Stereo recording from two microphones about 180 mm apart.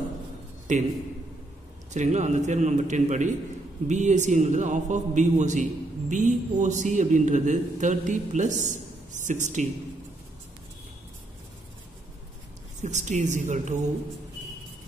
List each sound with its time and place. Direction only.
0.7 s a man's voice: 40° right (ahead or behind)
2.0 s a man's voice: 40° right (ahead or behind)
12.8 s a man's voice: 40° right (ahead or behind)